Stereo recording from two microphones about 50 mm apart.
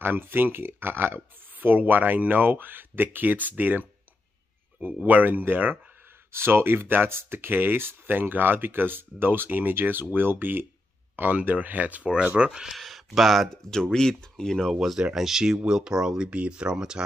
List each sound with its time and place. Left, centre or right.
0.0 s speech: right
5.0 s speech: right
12.4 s speech: centre
12.7 s speech: centre
13.5 s speech: centre
14.7 s speech: centre